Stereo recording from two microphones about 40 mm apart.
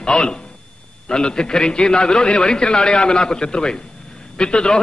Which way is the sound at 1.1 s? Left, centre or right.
Centre.